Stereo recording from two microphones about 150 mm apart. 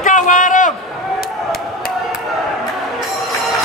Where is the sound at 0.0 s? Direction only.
60° left (ahead or behind).